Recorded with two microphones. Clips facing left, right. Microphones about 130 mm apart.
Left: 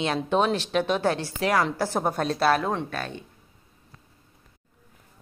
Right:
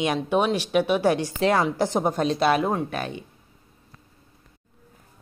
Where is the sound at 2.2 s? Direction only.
5° right (ahead or behind).